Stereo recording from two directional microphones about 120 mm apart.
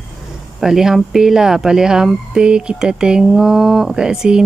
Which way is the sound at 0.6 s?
5° right (ahead or behind).